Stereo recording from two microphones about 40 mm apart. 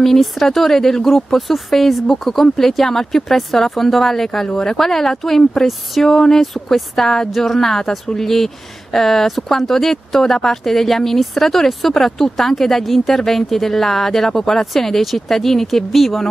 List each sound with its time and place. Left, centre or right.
0.0 s speech: centre